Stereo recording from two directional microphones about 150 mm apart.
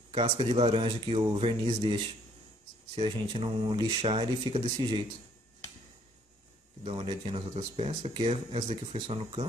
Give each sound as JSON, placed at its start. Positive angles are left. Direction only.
{"t": 0.1, "sound": "speech", "side_deg": -35}
{"t": 3.0, "sound": "speech", "side_deg": -40}
{"t": 6.8, "sound": "speech", "side_deg": -40}